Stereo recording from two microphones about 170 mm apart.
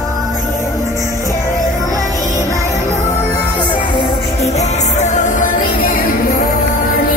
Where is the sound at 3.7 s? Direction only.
30° left (ahead or behind).